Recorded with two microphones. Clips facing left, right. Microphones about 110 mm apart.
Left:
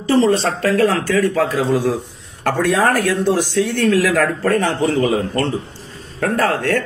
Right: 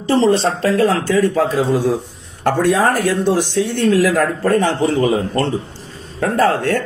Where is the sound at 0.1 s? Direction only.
25° right (ahead or behind).